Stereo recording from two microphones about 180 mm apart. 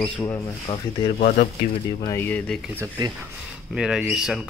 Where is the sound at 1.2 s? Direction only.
45° left (ahead or behind).